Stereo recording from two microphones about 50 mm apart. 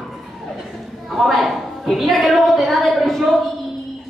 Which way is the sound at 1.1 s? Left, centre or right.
Centre.